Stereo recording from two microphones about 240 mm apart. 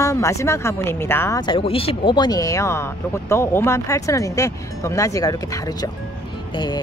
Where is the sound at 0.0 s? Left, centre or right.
Centre.